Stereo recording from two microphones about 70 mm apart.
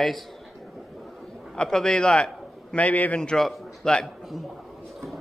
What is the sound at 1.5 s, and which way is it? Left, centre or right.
A man's voice, centre.